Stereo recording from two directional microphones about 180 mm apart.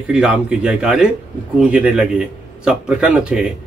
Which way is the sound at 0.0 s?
5° right (ahead or behind).